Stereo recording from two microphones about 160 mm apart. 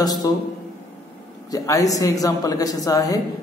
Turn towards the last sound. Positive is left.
turn(degrees=20)  # may be behind; listen again after turning